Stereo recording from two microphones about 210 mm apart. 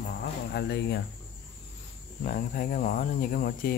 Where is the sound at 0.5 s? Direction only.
50° left (ahead or behind).